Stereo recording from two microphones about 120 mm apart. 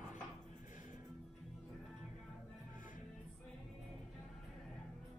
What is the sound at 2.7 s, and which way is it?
Music, 90° left.